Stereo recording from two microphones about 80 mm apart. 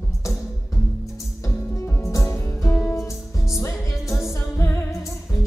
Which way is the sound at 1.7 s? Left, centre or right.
Left.